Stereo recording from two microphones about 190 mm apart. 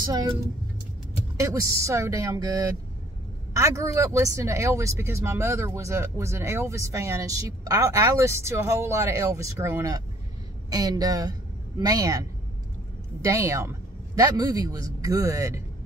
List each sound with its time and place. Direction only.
0.0 s speech: 20° right (ahead or behind)
1.3 s a man's voice: 15° right (ahead or behind)